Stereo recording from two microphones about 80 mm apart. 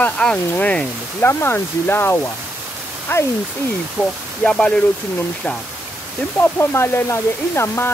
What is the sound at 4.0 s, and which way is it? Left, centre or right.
Speech, centre.